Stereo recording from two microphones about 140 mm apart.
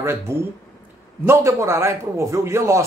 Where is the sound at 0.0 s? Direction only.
20° right (ahead or behind).